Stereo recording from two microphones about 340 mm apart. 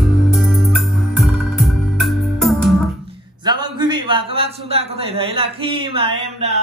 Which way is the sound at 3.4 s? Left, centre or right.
Centre.